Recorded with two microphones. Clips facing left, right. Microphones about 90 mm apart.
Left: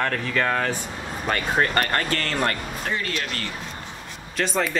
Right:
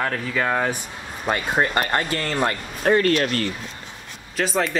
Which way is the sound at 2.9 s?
50° right (ahead or behind).